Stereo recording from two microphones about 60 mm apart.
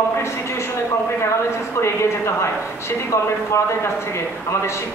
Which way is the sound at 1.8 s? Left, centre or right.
Left.